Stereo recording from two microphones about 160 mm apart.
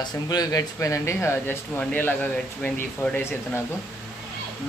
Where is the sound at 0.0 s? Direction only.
25° left (ahead or behind).